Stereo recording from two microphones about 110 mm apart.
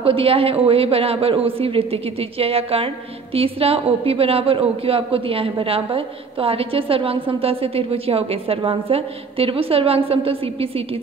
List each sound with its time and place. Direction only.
0.0 s a woman's voice: 60° right (ahead or behind)